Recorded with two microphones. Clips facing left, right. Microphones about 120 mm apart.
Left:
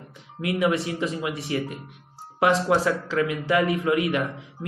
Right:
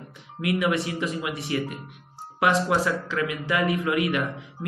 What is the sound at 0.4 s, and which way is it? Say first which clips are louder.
A man's voice: left 1 dB; 35° left (ahead or behind).